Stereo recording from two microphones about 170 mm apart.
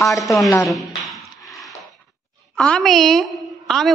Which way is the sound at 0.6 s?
Centre (ahead or behind).